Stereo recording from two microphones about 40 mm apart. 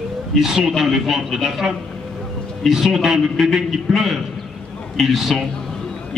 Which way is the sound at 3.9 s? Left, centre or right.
Centre.